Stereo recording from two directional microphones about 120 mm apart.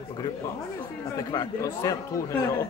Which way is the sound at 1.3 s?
30° left (ahead or behind).